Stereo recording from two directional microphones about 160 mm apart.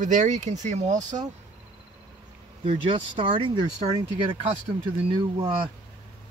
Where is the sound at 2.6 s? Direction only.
30° right (ahead or behind).